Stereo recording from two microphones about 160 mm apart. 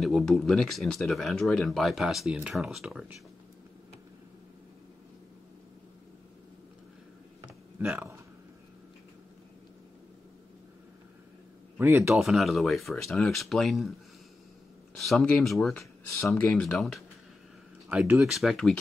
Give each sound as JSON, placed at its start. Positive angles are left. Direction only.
{"t": 0.0, "sound": "speech", "side_deg": 0}
{"t": 7.8, "sound": "speech", "side_deg": -10}
{"t": 11.8, "sound": "speech", "side_deg": -15}
{"t": 12.2, "sound": "speech", "side_deg": 0}
{"t": 15.0, "sound": "speech", "side_deg": 5}
{"t": 16.1, "sound": "speech", "side_deg": 15}
{"t": 16.4, "sound": "speech", "side_deg": 0}
{"t": 17.8, "sound": "speech", "side_deg": -10}